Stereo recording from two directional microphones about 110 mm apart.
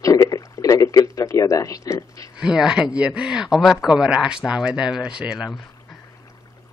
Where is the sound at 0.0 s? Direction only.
30° left (ahead or behind).